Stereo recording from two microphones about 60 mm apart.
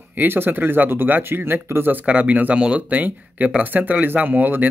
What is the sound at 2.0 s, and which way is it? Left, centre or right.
Speech, right.